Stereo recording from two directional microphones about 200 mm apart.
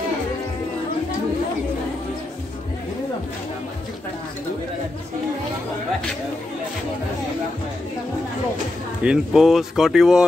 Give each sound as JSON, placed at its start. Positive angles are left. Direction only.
{"t": 9.0, "sound": "speech", "side_deg": -5}